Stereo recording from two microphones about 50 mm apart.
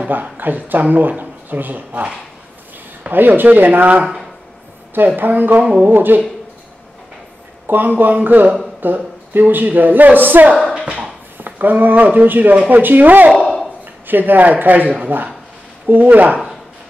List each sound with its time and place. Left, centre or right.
0.0 s speech: right
3.1 s speech: right
7.6 s speech: right